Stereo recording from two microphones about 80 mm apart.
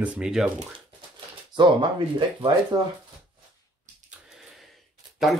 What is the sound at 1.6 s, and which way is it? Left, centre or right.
Speech, right.